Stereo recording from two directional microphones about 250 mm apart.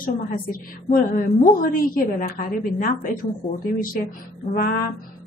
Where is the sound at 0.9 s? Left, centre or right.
Left.